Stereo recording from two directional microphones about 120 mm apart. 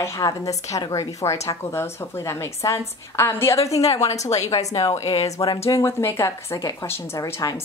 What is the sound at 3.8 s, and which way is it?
Speech, 60° left (ahead or behind).